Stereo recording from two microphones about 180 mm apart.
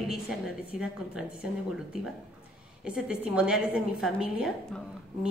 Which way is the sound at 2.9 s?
5° right (ahead or behind).